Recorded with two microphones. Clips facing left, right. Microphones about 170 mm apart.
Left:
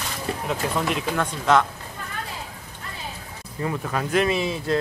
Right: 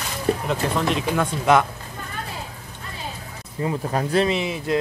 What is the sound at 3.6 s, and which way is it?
Speech, 35° right (ahead or behind).